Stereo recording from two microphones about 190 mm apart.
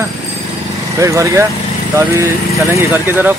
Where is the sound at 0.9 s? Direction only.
15° right (ahead or behind).